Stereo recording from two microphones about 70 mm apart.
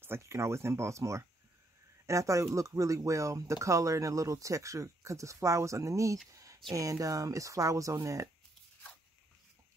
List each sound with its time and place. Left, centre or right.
0.0 s speech: right
6.3 s a sound: right
6.7 s speech: right